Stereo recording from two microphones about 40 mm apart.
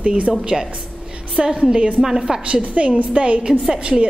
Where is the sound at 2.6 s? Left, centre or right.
Right.